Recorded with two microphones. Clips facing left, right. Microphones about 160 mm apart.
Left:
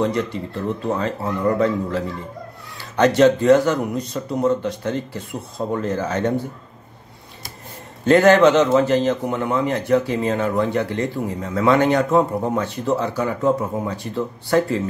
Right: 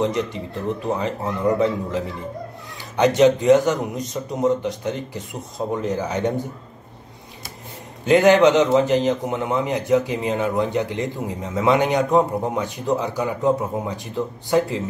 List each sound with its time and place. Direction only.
0.0 s a man's voice: 20° right (ahead or behind)
8.0 s a man's voice: 15° right (ahead or behind)